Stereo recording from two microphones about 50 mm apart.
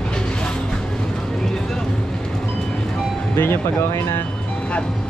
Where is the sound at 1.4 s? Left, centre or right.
Centre.